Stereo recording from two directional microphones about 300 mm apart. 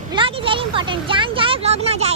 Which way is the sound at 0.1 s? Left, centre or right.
Centre.